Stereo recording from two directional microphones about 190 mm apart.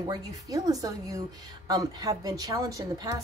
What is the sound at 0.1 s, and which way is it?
A woman's voice, 20° right (ahead or behind).